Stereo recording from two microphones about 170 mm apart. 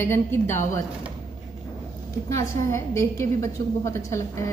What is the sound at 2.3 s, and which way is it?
A woman's voice, 15° left (ahead or behind).